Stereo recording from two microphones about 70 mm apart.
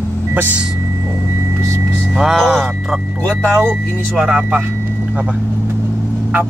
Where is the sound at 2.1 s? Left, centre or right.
Centre.